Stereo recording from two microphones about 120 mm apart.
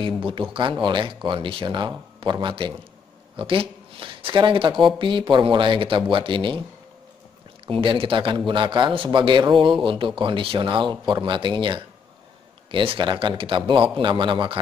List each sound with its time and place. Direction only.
0.0 s speech: 45° right (ahead or behind)
7.6 s speech: 45° right (ahead or behind)